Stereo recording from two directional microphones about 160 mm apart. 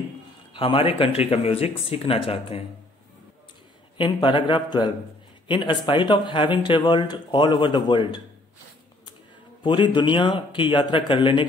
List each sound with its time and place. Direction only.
0.5 s speech: 35° left (ahead or behind)
4.0 s speech: 30° left (ahead or behind)
9.6 s speech: 30° left (ahead or behind)